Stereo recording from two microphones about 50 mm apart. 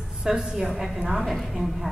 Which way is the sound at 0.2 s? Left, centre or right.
Centre.